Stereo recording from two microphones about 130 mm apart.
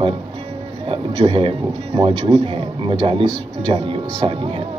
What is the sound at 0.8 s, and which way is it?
Music, 45° right (ahead or behind).